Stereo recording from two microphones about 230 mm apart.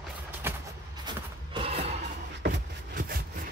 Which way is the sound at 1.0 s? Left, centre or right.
Right.